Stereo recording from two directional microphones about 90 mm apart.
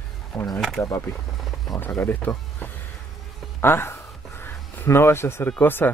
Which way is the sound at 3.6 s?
25° left (ahead or behind).